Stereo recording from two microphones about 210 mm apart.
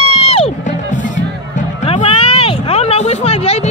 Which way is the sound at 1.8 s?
25° left (ahead or behind).